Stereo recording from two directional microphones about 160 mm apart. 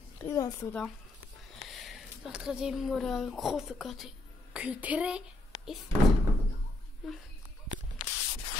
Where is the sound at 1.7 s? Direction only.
Centre (ahead or behind).